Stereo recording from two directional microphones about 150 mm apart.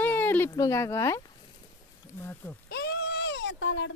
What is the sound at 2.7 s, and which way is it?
Goat, 90° left.